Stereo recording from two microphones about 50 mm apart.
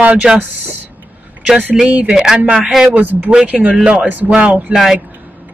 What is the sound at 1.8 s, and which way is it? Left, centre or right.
Speech, centre.